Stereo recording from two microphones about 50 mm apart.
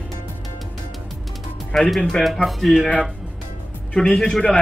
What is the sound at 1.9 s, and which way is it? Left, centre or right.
Speech, centre.